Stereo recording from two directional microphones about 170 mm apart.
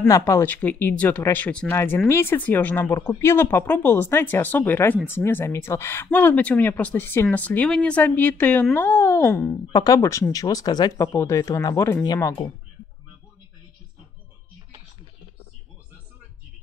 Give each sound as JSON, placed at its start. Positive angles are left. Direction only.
{"t": 0.1, "sound": "speech", "side_deg": 15}